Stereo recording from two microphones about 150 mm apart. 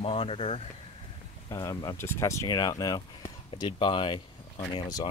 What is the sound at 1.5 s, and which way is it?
Speech, 25° left (ahead or behind).